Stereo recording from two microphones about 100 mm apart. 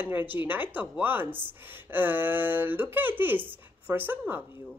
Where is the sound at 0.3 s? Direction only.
20° right (ahead or behind).